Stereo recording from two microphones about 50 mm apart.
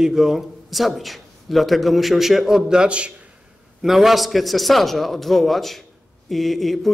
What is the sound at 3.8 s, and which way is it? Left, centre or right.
A man's voice, centre.